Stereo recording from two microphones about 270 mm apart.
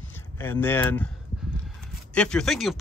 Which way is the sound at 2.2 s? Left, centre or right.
Centre.